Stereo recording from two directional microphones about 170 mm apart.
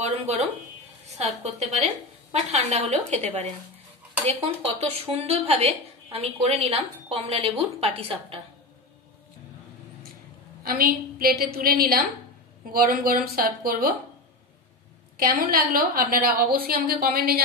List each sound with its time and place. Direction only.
0.0 s a woman's voice: 35° right (ahead or behind)
4.3 s a woman's voice: 35° right (ahead or behind)
10.7 s a woman's voice: 60° right (ahead or behind)
15.1 s a woman's voice: 60° right (ahead or behind)